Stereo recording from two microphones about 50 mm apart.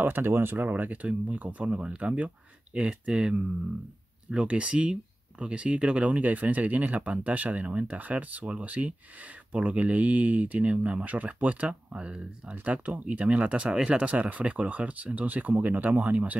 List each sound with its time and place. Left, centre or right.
0.0 s speech: right